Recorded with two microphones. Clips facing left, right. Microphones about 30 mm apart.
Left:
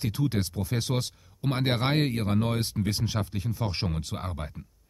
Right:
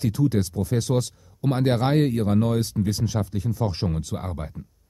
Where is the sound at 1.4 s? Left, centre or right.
Centre.